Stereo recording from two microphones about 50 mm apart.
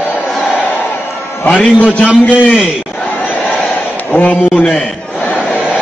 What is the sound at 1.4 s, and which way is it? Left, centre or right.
Speech, left.